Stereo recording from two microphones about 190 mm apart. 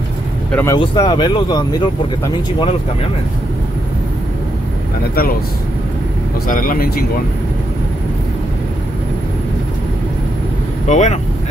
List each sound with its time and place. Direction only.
0.5 s speech: 10° left (ahead or behind)
0.7 s speech: 20° left (ahead or behind)
6.4 s speech: 45° left (ahead or behind)
10.9 s speech: 40° left (ahead or behind)